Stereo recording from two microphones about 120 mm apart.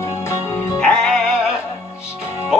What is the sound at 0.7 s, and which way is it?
Music, 10° left (ahead or behind).